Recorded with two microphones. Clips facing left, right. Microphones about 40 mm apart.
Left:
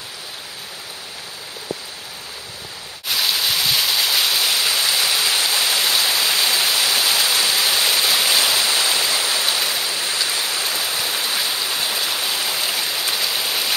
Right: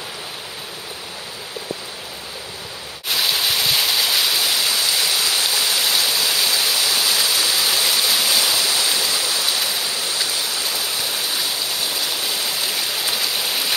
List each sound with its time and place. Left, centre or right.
3.1 s a sound: centre
6.0 s waterfall: centre
10.2 s stream: left
10.8 s stream: centre